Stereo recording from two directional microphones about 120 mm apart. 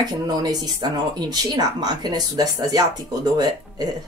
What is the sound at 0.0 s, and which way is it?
Speech, 35° right (ahead or behind).